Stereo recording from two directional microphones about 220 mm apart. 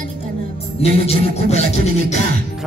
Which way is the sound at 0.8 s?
30° left (ahead or behind).